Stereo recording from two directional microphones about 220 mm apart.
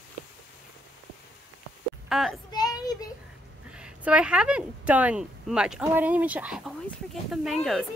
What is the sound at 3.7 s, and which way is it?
Speech, 5° right (ahead or behind).